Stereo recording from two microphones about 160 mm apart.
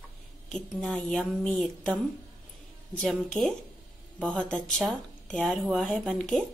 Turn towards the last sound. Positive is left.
turn(degrees=0)  # may be behind; listen again after turning